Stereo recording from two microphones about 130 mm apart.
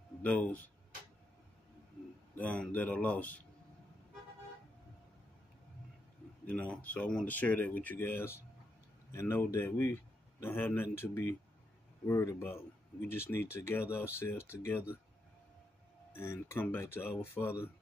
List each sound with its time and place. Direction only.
0.2 s speech: 10° left (ahead or behind)
2.3 s speech: 10° left (ahead or behind)
6.4 s speech: 10° left (ahead or behind)
16.1 s speech: 20° left (ahead or behind)